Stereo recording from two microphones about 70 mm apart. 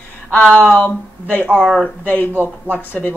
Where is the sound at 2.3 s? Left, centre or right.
Right.